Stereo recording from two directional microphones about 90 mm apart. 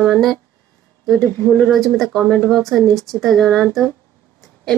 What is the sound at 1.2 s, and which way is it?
Speech, 20° left (ahead or behind).